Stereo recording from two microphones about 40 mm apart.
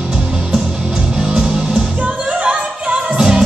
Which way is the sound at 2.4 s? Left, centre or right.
Right.